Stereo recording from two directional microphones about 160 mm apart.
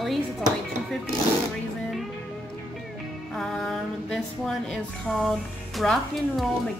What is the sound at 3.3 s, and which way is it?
Music, centre (ahead or behind).